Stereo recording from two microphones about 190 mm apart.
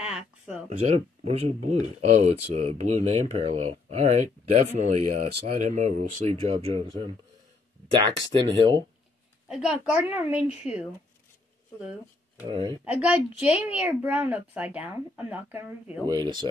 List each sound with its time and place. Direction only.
0.0 s a sound: 5° right (ahead or behind)
0.7 s speech: 35° right (ahead or behind)
8.3 s speech: 25° right (ahead or behind)
9.5 s a woman's voice: 5° right (ahead or behind)
12.4 s speech: 25° right (ahead or behind)
12.8 s a woman's voice: 5° right (ahead or behind)
16.1 s speech: 20° right (ahead or behind)